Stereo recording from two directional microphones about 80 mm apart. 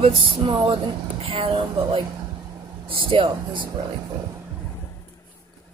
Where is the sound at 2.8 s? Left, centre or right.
Right.